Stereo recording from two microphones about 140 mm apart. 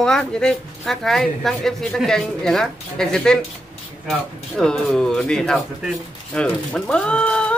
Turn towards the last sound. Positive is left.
turn(degrees=5)  # may be behind; listen again after turning